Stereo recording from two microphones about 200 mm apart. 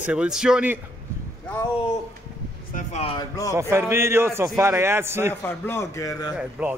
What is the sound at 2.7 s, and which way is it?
Speech, 30° left (ahead or behind).